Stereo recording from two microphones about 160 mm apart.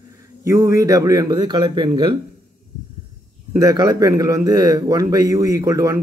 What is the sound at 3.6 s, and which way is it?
Speech, 25° right (ahead or behind).